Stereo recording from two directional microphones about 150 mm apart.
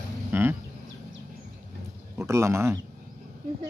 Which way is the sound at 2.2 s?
20° right (ahead or behind).